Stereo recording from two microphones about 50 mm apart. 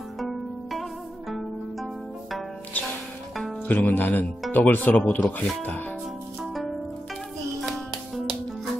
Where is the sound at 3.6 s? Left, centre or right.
Left.